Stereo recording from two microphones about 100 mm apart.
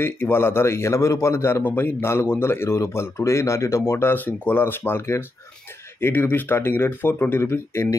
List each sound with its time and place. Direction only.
0.0 s a man's voice: 20° left (ahead or behind)